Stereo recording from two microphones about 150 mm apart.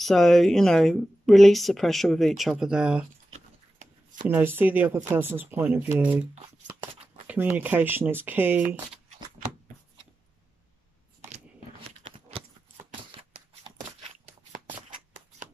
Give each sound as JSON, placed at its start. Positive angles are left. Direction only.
{"t": 0.0, "sound": "a woman's voice", "side_deg": 0}
{"t": 3.3, "sound": "writing", "side_deg": -55}
{"t": 4.3, "sound": "speech", "side_deg": -15}
{"t": 7.2, "sound": "speech", "side_deg": -10}